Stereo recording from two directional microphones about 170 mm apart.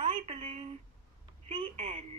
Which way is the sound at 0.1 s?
40° right (ahead or behind).